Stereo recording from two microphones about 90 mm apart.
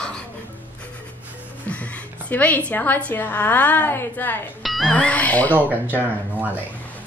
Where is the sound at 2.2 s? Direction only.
20° left (ahead or behind).